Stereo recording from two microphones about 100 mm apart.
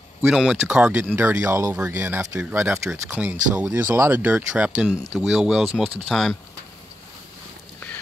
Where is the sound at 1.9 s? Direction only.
20° right (ahead or behind).